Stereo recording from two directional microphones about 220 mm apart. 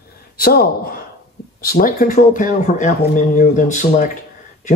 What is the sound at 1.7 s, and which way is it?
Speech, 40° left (ahead or behind).